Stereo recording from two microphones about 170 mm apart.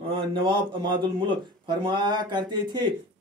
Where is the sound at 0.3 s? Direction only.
30° right (ahead or behind).